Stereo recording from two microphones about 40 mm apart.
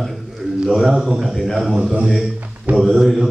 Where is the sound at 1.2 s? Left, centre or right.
Centre.